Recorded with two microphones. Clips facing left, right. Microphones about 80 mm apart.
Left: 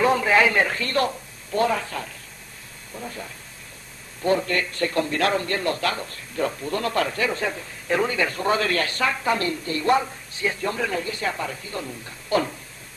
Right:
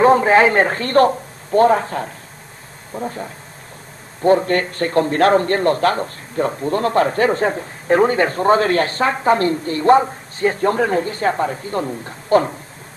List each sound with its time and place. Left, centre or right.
0.0 s a man's voice: right